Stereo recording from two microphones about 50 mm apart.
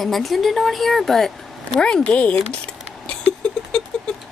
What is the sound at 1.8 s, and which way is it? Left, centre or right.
Speech, left.